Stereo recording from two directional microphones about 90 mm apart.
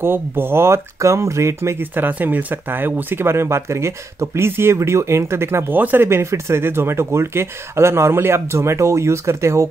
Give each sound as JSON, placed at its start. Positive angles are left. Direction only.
{"t": 0.0, "sound": "speech", "side_deg": -25}